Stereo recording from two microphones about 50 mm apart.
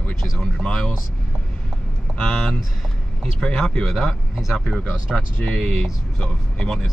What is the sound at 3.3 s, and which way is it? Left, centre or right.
Speech, centre.